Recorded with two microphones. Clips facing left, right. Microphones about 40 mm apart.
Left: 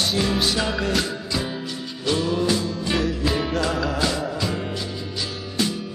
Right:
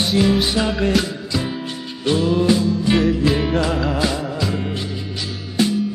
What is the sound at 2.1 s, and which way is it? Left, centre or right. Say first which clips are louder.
Music: right 5 dB; right.